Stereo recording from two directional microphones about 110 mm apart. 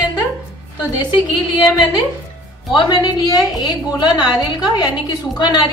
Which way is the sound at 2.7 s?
40° left (ahead or behind).